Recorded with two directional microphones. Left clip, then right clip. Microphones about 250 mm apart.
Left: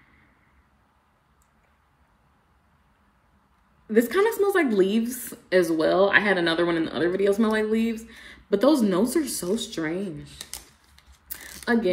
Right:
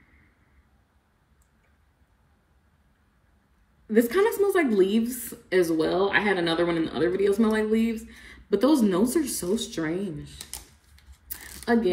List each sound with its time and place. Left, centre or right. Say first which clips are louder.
3.9 s speech: left 1 dB; centre
11.2 s typing: even; centre